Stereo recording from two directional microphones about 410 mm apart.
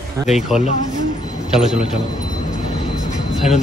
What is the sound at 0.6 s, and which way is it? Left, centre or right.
Speech, centre.